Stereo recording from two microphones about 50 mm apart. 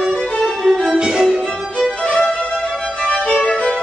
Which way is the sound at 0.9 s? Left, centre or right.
Centre.